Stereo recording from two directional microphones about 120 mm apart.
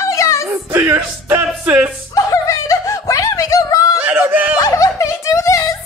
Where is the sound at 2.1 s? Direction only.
30° left (ahead or behind).